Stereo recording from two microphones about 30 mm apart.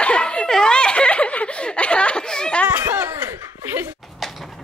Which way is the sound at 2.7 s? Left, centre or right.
Right.